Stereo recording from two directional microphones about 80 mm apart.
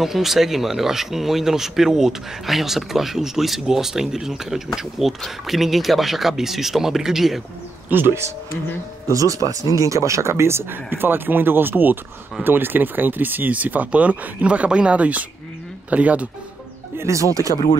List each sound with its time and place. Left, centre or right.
0.0 s speech: centre
7.9 s speech: right
9.0 s speech: right; by 16.3 s centre
16.9 s speech: right